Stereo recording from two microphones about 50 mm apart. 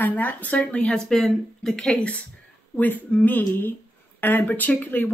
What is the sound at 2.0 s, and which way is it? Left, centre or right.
Speech, left.